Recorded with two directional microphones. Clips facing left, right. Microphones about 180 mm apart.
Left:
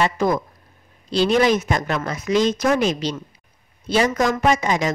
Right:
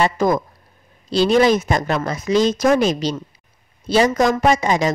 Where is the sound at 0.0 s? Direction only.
45° right (ahead or behind).